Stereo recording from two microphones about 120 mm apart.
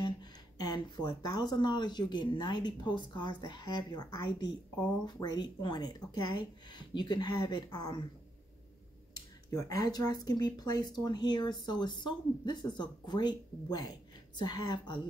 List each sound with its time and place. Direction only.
0.0 s speech: 35° left (ahead or behind)
9.1 s speech: 30° left (ahead or behind)